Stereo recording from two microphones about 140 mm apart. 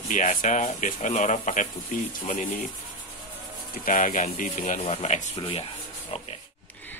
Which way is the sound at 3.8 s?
65° left (ahead or behind).